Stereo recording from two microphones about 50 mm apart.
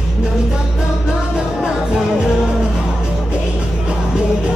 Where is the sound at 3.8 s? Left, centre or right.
Right.